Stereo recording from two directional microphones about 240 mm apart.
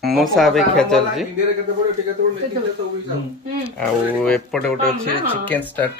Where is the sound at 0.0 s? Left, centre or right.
Centre.